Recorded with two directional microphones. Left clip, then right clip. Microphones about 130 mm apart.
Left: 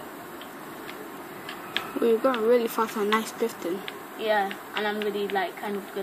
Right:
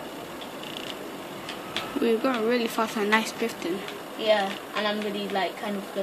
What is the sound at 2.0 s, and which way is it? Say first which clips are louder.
A woman's voice: left 3 dB; 10° left (ahead or behind).